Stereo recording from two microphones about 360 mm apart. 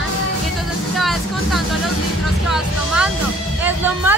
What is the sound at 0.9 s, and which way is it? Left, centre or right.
Speech, centre.